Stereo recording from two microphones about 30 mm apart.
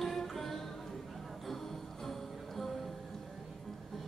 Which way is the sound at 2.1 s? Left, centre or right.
Centre.